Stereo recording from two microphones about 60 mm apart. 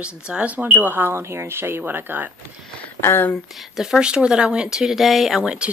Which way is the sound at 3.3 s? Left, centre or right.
Centre.